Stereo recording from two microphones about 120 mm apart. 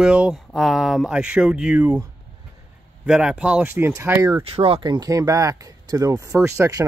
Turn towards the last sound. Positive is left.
turn(degrees=-25)  # may be behind; listen again after turning